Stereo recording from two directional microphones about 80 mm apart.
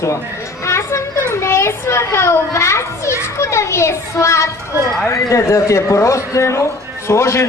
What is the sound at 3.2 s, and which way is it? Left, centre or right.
A child's voice, left.